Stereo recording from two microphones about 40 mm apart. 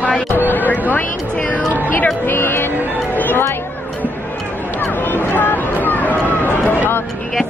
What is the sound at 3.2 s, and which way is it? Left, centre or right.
Speech, left.